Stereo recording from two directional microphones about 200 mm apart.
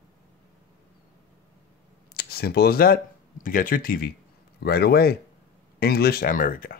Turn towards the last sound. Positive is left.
turn(degrees=45)  # may be behind; listen again after turning